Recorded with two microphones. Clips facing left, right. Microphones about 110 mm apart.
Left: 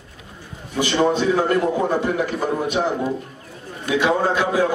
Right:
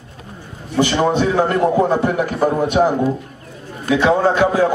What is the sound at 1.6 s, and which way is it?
Speech, 30° right (ahead or behind).